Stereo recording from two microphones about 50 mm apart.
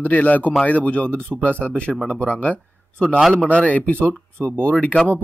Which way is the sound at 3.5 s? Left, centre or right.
Left.